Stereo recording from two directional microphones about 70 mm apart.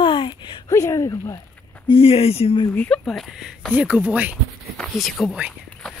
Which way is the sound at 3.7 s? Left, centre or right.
Centre.